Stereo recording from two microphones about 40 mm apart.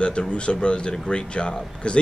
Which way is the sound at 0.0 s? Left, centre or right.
Left.